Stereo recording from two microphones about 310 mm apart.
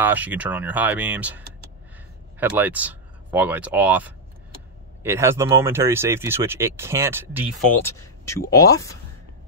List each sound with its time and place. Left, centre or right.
0.0 s speech: centre
2.4 s speech: centre
7.8 s speech: centre